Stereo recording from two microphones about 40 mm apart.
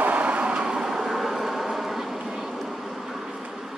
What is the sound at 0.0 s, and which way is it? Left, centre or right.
Vehicle, right.